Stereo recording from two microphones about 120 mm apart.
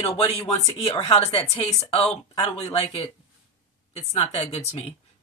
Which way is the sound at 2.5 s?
55° left (ahead or behind).